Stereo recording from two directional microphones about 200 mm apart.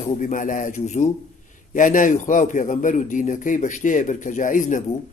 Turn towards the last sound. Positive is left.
turn(degrees=40)  # may be behind; listen again after turning